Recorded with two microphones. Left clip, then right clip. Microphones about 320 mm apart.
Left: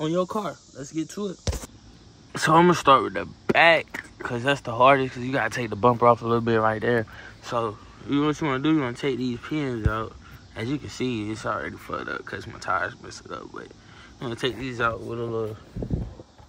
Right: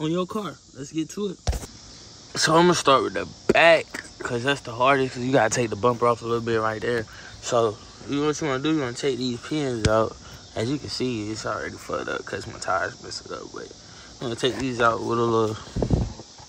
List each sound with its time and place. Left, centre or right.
0.0 s speech: centre
15.0 s speech: right